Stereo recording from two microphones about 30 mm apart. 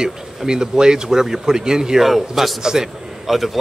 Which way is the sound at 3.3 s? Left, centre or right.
Centre.